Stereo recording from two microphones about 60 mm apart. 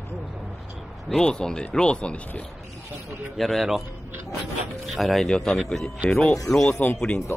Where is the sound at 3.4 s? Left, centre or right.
Centre.